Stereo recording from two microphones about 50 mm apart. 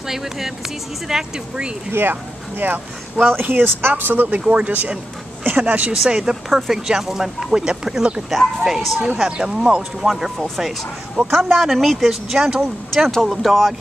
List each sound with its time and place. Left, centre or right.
0.1 s speech: centre
1.9 s speech: right
4.5 s speech: right
6.0 s speech: centre
8.3 s speech: centre
9.2 s speech: centre
10.0 s speech: centre
11.2 s speech: right
11.5 s speech: centre
13.2 s speech: centre